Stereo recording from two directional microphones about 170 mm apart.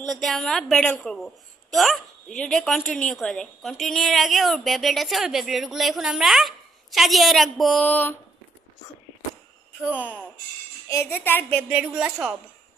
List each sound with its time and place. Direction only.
0.0 s a woman's voice: centre (ahead or behind)
9.8 s a woman's voice: 10° left (ahead or behind)
11.7 s a woman's voice: 5° right (ahead or behind)